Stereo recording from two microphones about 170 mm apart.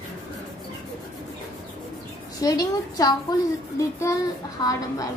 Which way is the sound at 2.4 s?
20° left (ahead or behind).